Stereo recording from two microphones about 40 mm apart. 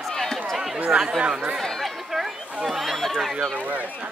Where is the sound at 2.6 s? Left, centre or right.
Centre.